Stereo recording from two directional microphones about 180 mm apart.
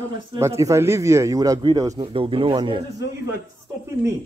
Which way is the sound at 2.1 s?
30° right (ahead or behind).